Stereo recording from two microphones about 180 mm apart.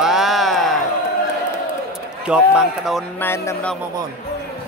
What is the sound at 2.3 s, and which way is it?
Speech, 5° right (ahead or behind).